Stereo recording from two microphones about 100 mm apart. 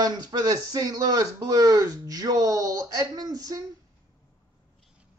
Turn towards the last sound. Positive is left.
turn(degrees=-35)  # may be behind; listen again after turning